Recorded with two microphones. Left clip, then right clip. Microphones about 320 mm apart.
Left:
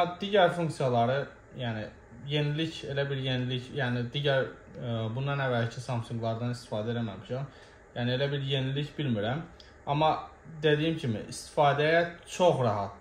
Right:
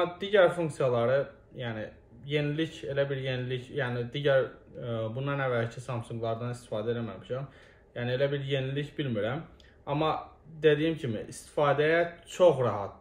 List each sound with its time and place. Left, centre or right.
0.2 s speech: centre